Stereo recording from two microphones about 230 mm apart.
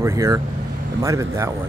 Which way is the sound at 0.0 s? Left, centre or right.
Centre.